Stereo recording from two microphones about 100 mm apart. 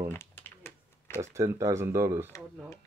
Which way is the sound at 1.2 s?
30° right (ahead or behind).